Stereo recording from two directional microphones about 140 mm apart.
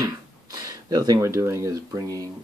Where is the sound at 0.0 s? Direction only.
25° right (ahead or behind).